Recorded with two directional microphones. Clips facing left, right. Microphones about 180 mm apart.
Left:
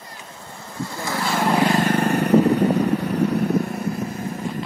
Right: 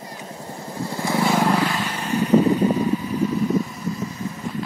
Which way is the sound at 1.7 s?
50° left (ahead or behind).